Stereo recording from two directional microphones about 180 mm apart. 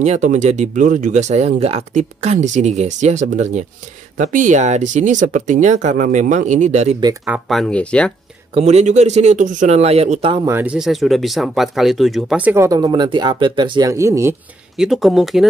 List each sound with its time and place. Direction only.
0.0 s speech: 40° right (ahead or behind)
7.2 s speech: centre (ahead or behind)
8.5 s speech: 35° right (ahead or behind)
10.3 s speech: 15° right (ahead or behind)
14.8 s speech: centre (ahead or behind)